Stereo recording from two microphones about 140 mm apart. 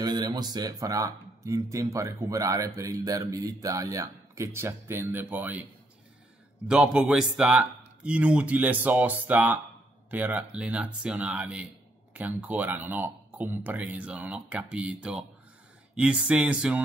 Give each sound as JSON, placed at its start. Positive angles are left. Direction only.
{"t": 0.0, "sound": "speech", "side_deg": -30}
{"t": 6.7, "sound": "speech", "side_deg": -5}